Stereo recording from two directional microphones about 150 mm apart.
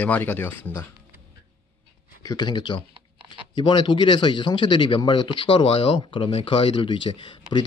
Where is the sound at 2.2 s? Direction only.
25° left (ahead or behind).